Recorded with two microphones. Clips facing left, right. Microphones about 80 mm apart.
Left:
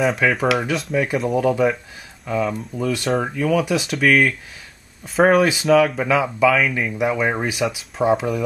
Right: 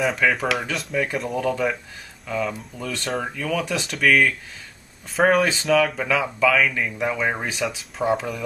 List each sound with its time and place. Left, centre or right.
0.0 s speech: centre